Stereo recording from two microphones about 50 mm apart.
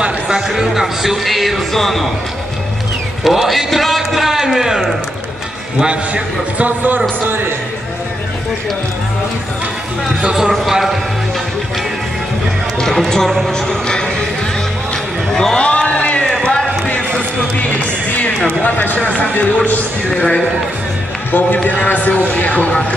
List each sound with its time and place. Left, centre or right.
0.5 s a man's voice: centre
3.3 s a man's voice: centre
5.8 s a man's voice: right
7.2 s speech: right
10.5 s a man's voice: centre
12.7 s a sound: centre
13.1 s speech: centre
15.3 s speech: centre
15.6 s a sound: left
18.6 s speech: left
18.9 s speech: left
20.2 s speech: centre
21.3 s speech: left